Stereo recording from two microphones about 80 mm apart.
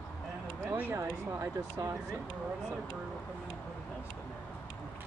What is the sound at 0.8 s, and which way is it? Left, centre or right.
Speech, right.